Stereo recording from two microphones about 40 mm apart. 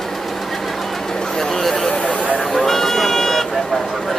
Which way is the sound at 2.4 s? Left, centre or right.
Centre.